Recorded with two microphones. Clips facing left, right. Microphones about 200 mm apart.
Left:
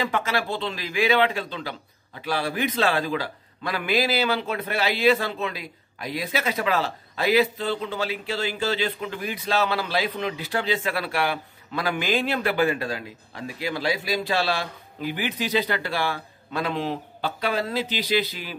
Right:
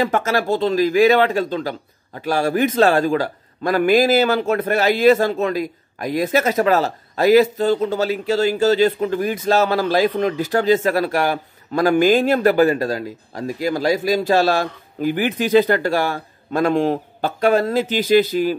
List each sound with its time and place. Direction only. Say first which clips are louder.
0.0 s speech: right 7 dB; 45° right (ahead or behind)